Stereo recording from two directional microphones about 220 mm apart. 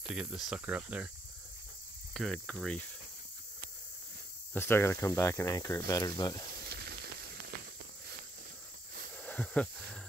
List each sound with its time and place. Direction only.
0.1 s speech: 5° right (ahead or behind)
2.1 s speech: centre (ahead or behind)
4.6 s speech: 10° left (ahead or behind)
6.6 s hiss: 50° right (ahead or behind)
9.2 s snake: 5° left (ahead or behind)